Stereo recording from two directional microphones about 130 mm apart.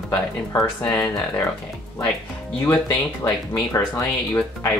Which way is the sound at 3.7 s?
25° left (ahead or behind).